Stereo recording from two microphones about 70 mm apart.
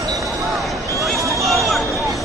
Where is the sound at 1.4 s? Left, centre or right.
Centre.